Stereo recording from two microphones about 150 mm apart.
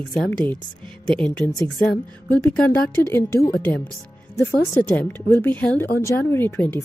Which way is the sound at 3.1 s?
15° left (ahead or behind).